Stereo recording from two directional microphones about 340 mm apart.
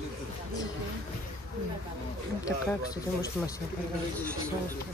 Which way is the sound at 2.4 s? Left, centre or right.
Centre.